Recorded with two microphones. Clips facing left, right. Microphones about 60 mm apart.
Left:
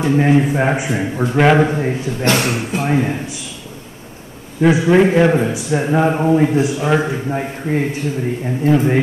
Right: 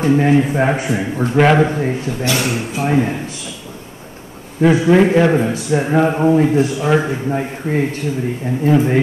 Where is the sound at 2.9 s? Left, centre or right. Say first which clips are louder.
Right 2 dB; centre.